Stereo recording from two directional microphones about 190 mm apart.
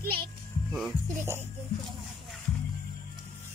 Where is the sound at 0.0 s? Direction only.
50° right (ahead or behind).